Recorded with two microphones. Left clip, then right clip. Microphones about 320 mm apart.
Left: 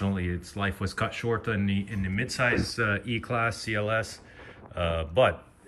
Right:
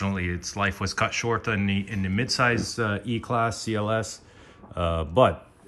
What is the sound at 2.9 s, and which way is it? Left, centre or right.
Speech, right.